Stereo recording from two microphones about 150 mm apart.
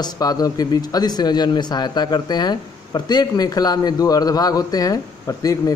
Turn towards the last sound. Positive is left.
turn(degrees=25)  # may be behind; listen again after turning